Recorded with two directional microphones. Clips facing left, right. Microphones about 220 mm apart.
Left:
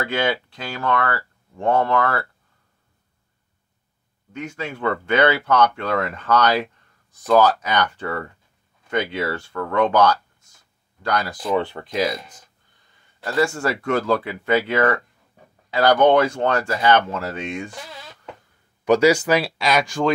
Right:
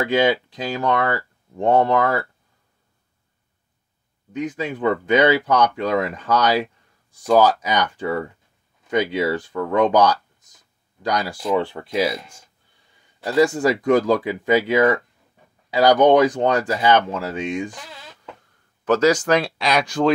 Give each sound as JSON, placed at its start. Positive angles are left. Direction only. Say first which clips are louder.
{"t": 0.0, "sound": "speech", "louder": "right 5 dB", "side_deg": -15}
{"t": 4.3, "sound": "speech", "louder": "right 5 dB", "side_deg": -15}
{"t": 18.9, "sound": "speech", "louder": "left 1 dB", "side_deg": 10}